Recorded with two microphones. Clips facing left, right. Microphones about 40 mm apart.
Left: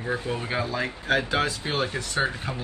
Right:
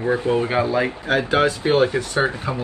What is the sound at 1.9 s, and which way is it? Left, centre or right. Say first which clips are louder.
Speech: right 6 dB; right.